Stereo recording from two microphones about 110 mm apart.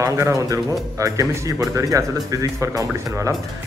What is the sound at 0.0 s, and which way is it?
Speech, 30° right (ahead or behind).